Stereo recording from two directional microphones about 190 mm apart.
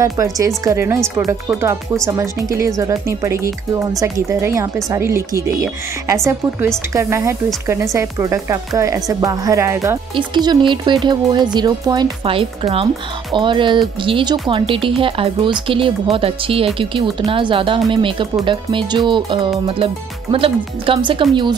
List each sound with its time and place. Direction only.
0.0 s speech: 15° right (ahead or behind)
2.0 s speech: 15° right (ahead or behind)